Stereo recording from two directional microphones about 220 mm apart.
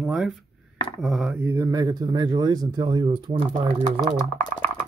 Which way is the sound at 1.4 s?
15° right (ahead or behind).